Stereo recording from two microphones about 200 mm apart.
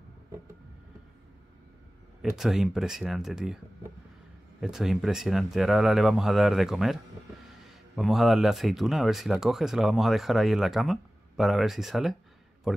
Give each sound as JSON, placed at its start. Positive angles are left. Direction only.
{"t": 2.3, "sound": "speech", "side_deg": 0}
{"t": 4.6, "sound": "speech", "side_deg": 0}
{"t": 12.7, "sound": "a sound", "side_deg": 0}